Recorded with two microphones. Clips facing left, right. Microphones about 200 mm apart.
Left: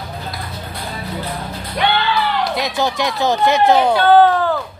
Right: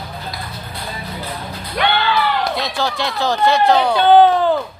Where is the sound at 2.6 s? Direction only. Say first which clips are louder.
Left 2 dB; 20° left (ahead or behind).